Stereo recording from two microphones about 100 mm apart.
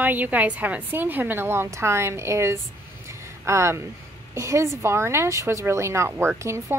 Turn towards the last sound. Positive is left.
turn(degrees=-30)  # may be behind; listen again after turning